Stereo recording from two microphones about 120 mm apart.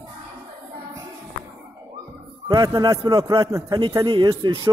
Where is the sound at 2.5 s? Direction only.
30° right (ahead or behind).